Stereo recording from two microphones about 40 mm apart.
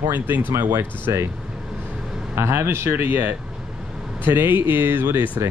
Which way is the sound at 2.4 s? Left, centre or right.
Right.